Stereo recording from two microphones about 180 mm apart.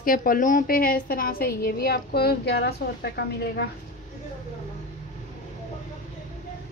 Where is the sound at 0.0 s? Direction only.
50° left (ahead or behind).